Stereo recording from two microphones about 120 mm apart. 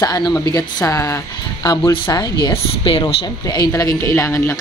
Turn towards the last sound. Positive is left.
turn(degrees=25)  # may be behind; listen again after turning